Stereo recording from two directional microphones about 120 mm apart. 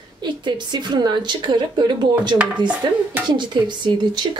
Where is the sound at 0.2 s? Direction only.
40° right (ahead or behind).